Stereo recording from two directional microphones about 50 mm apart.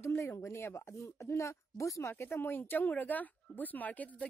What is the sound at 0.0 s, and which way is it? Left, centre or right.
Speech, left.